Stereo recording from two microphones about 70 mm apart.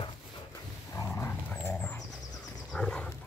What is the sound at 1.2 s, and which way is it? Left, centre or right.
Dog, left.